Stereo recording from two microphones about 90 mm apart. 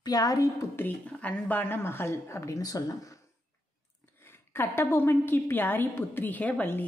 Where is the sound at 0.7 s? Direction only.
20° left (ahead or behind); by 3.1 s 40° left (ahead or behind).